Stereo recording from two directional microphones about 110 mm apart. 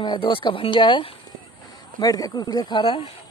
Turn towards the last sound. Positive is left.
turn(degrees=50)  # may be behind; listen again after turning